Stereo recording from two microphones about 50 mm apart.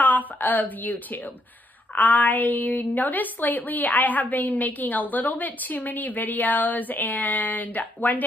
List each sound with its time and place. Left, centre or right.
0.0 s a woman's voice: left